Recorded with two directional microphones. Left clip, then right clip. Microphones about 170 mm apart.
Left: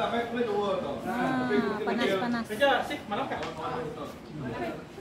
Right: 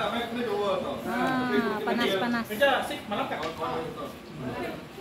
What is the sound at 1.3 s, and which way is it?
Speech, 25° right (ahead or behind).